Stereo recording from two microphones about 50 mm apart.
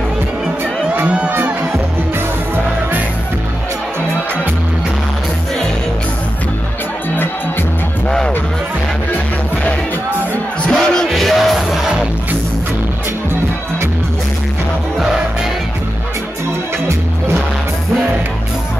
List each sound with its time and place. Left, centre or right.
0.9 s crowd: right
10.7 s music: centre
11.1 s music: centre